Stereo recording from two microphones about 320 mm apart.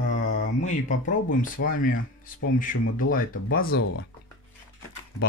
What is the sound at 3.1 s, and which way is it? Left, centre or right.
Speech, left.